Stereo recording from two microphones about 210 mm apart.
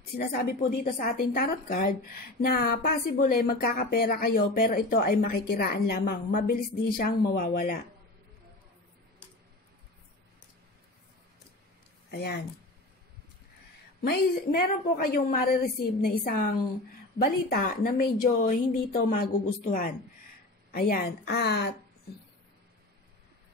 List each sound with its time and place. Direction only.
0.1 s a woman's voice: 45° left (ahead or behind)
12.1 s speech: 50° left (ahead or behind)
14.0 s a woman's voice: 45° left (ahead or behind)